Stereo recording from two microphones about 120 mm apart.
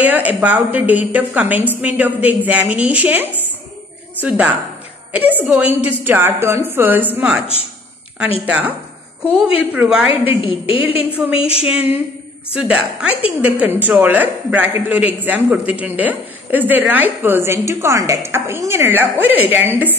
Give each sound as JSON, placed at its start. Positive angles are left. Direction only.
{"t": 0.0, "sound": "a woman's voice", "side_deg": -15}
{"t": 8.5, "sound": "a woman's voice", "side_deg": -15}
{"t": 10.0, "sound": "a woman's voice", "side_deg": 50}
{"t": 11.6, "sound": "a woman's voice", "side_deg": -15}